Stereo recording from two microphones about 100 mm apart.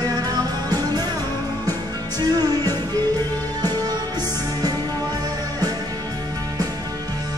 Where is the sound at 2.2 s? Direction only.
40° right (ahead or behind).